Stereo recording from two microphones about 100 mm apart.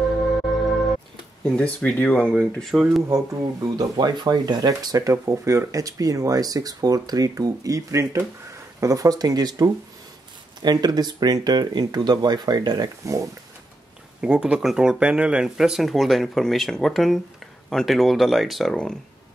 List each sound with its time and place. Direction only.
0.0 s music: centre (ahead or behind)
1.4 s speech: 10° left (ahead or behind)
3.7 s speech: 45° right (ahead or behind)
14.2 s speech: 10° right (ahead or behind)